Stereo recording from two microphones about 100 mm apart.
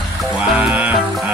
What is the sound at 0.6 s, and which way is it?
Music, 15° right (ahead or behind).